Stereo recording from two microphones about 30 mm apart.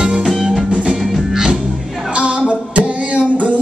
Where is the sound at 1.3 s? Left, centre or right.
Centre.